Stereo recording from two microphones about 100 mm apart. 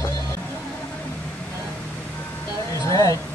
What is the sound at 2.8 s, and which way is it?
Speech, 35° left (ahead or behind).